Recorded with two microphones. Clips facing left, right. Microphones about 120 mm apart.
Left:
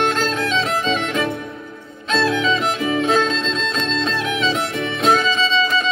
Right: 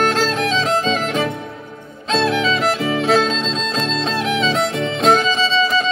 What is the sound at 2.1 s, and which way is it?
Music, 30° right (ahead or behind).